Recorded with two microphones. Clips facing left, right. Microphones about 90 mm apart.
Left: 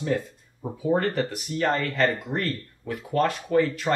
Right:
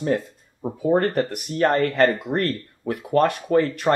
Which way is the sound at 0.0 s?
50° right (ahead or behind).